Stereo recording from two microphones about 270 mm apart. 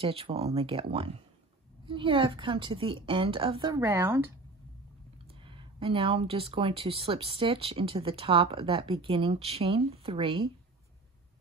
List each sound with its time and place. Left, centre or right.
0.0 s a woman's voice: right
5.4 s speech: centre